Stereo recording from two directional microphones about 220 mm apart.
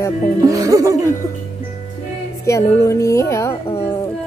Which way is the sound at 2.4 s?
15° left (ahead or behind).